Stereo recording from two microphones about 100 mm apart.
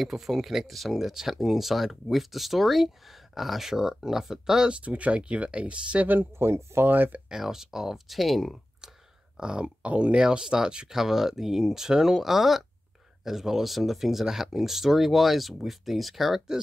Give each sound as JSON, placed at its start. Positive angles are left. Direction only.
{"t": 0.0, "sound": "speech", "side_deg": 0}
{"t": 7.2, "sound": "speech", "side_deg": -5}